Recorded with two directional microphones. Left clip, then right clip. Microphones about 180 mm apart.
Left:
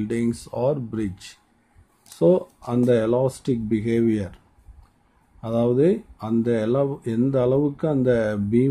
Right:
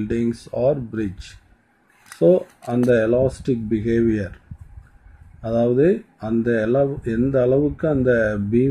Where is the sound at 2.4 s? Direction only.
15° left (ahead or behind).